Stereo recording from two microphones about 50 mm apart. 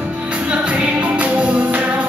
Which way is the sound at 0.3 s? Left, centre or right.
Right.